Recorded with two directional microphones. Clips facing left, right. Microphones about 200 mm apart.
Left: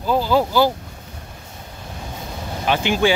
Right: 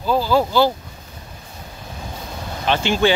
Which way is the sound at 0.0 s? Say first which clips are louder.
Even; 15° left (ahead or behind).